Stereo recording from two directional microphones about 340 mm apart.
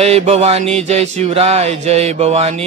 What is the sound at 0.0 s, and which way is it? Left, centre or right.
Mantra, centre.